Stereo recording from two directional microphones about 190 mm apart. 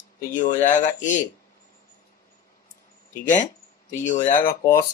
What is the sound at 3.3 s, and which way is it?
Speech, 40° left (ahead or behind).